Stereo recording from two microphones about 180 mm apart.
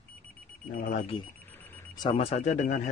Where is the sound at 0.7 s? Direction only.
50° left (ahead or behind).